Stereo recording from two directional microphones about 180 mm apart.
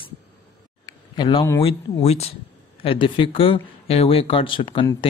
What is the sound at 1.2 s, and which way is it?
Speech, 25° left (ahead or behind).